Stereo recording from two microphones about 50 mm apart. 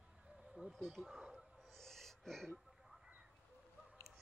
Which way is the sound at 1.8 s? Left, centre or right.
Centre.